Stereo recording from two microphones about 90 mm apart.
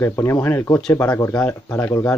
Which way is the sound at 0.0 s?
30° left (ahead or behind).